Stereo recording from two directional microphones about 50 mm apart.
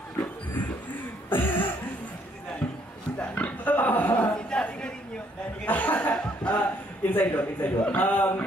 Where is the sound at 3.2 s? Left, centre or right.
Left.